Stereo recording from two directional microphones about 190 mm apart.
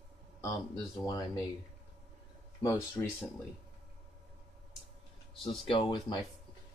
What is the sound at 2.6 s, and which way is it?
Speech, 10° left (ahead or behind).